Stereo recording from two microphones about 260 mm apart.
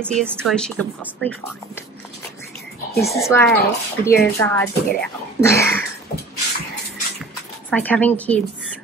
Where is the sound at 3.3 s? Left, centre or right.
Centre.